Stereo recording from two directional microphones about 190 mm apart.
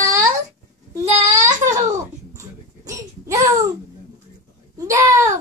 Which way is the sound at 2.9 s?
15° right (ahead or behind).